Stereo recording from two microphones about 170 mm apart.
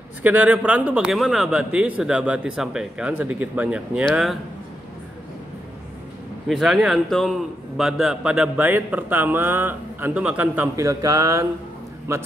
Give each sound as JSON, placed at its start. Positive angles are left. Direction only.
{"t": 0.2, "sound": "speech", "side_deg": -10}
{"t": 6.4, "sound": "a man's voice", "side_deg": 0}